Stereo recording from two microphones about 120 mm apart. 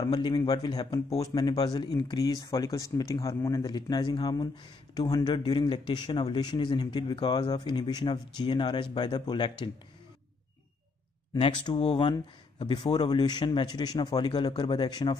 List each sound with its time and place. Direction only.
0.0 s speech: 35° left (ahead or behind)
11.3 s speech: 45° left (ahead or behind)
11.7 s speech: 60° left (ahead or behind)
12.0 s speech: 40° left (ahead or behind)